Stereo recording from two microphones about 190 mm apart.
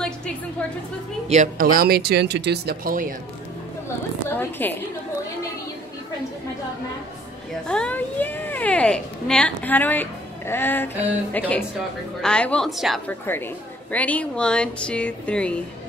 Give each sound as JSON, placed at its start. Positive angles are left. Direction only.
{"t": 1.3, "sound": "speech", "side_deg": -45}
{"t": 4.3, "sound": "a woman's voice", "side_deg": 10}
{"t": 7.6, "sound": "a woman's voice", "side_deg": 5}
{"t": 13.3, "sound": "a woman's voice", "side_deg": 10}